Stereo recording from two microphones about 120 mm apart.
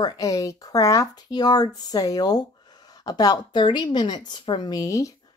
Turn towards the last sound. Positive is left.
turn(degrees=25)  # may be behind; listen again after turning